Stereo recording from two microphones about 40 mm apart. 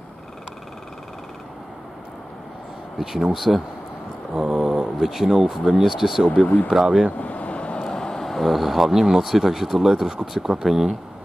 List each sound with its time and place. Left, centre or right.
3.0 s speech: centre
4.3 s speech: centre
6.4 s speech: left
6.7 s speech: centre
7.2 s vehicle: left
7.8 s speech: centre